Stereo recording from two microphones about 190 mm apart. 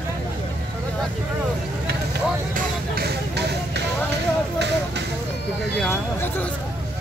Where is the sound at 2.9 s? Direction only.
60° right (ahead or behind).